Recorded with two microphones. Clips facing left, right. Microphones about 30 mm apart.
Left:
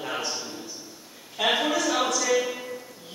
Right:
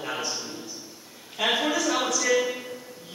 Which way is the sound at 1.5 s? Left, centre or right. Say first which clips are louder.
Even; centre.